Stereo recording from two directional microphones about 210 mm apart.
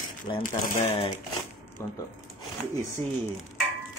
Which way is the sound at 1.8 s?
10° left (ahead or behind).